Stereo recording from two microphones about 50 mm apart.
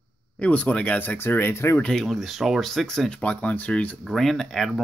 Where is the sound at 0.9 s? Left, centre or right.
Left.